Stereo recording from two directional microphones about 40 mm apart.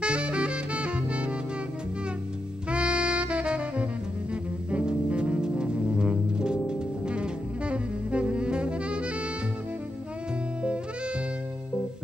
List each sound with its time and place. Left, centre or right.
0.0 s saxophone: right
2.7 s saxophone: right
4.6 s music: right